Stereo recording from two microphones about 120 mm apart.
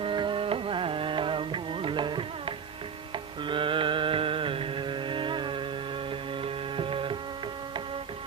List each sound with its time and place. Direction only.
0.0 s music: 45° right (ahead or behind)
3.4 s carnatic music: 45° right (ahead or behind)
6.4 s music: 45° right (ahead or behind)